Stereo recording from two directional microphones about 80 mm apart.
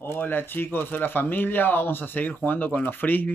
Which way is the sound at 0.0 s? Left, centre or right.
Left.